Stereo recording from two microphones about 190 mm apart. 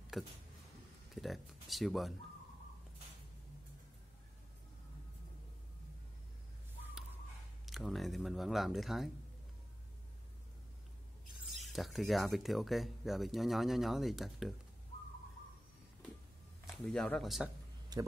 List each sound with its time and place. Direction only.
1.1 s speech: centre (ahead or behind)
7.6 s speech: centre (ahead or behind)
11.4 s speech: centre (ahead or behind)
16.8 s speech: 5° left (ahead or behind)
17.9 s speech: 20° right (ahead or behind)